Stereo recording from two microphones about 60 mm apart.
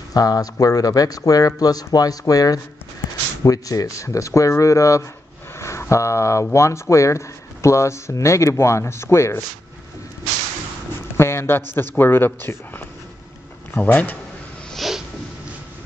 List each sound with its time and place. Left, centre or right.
0.1 s speech: left
3.4 s speech: left
11.1 s a man's voice: left
13.8 s speech: left
14.7 s a sound: centre